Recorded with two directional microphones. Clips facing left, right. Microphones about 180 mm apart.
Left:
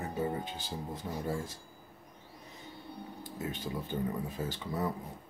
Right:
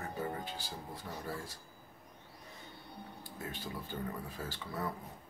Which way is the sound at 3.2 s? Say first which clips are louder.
Left 6 dB; 20° left (ahead or behind).